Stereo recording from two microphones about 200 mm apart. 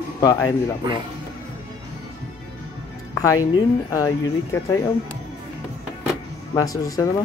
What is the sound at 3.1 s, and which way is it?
Music, 15° left (ahead or behind).